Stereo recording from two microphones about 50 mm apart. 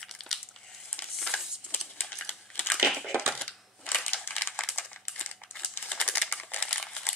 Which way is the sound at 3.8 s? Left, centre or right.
Left.